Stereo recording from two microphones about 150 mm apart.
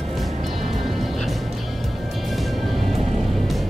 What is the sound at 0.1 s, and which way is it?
Music, centre (ahead or behind).